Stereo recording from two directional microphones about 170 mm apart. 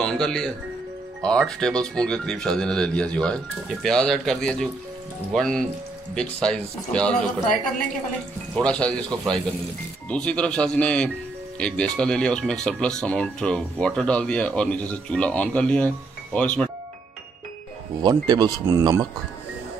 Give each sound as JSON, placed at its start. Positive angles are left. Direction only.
{"t": 0.0, "sound": "speech", "side_deg": 5}
{"t": 8.5, "sound": "speech", "side_deg": 5}
{"t": 18.0, "sound": "speech", "side_deg": -25}